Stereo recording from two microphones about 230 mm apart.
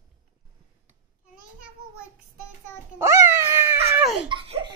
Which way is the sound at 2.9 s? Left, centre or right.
Centre.